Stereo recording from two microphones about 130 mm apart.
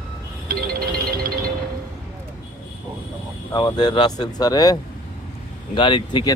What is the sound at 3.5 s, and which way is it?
Speech, 35° left (ahead or behind).